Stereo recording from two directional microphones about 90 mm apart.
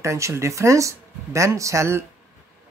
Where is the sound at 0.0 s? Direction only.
35° right (ahead or behind).